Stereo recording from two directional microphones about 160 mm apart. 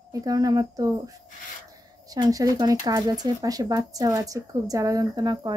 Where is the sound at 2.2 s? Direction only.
25° right (ahead or behind).